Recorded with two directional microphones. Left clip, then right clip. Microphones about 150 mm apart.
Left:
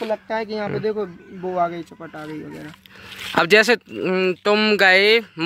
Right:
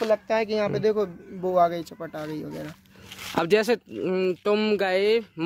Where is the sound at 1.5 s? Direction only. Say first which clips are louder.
Right 1 dB; 50° right (ahead or behind).